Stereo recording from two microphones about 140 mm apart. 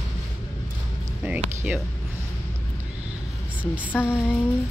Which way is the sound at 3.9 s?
15° left (ahead or behind).